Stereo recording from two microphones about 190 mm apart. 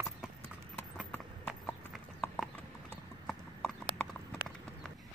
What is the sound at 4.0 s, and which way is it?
Clip-clop, 5° left (ahead or behind).